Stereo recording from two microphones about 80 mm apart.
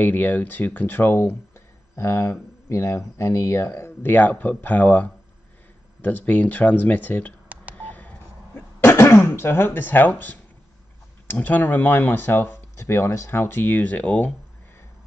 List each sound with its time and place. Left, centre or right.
0.0 s speech: left
7.7 s telephone dialing: centre
8.9 s speech: left